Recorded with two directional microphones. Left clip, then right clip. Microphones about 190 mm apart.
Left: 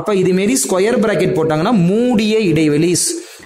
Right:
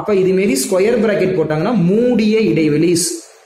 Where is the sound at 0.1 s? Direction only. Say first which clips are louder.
Right 1 dB; 50° left (ahead or behind).